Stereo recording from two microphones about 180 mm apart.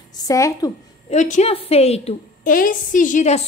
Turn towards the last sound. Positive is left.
turn(degrees=40)  # may be behind; listen again after turning